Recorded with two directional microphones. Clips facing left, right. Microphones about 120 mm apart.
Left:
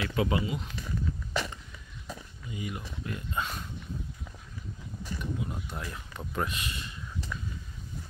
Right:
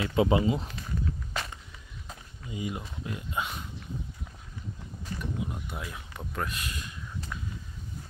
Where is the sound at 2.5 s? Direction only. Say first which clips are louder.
Right 3 dB; 20° right (ahead or behind).